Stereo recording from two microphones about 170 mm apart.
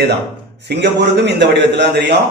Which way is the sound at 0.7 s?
80° right.